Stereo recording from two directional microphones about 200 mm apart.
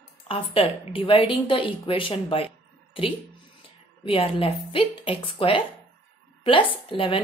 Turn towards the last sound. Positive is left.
turn(degrees=25)  # may be behind; listen again after turning